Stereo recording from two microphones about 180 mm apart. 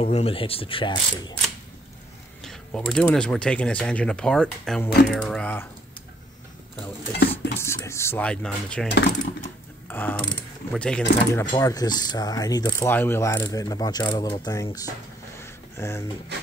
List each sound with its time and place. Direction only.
0.0 s speech: 35° left (ahead or behind)
2.4 s speech: 5° left (ahead or behind)
7.1 s dishes: 65° left (ahead or behind)
7.6 s speech: 15° left (ahead or behind)
9.8 s speech: 10° left (ahead or behind)
11.5 s speech: 20° left (ahead or behind)
15.4 s a sound: 15° left (ahead or behind)